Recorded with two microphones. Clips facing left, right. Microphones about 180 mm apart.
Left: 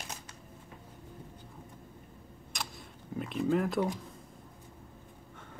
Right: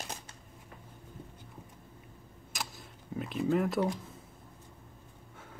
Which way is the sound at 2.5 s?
5° right (ahead or behind).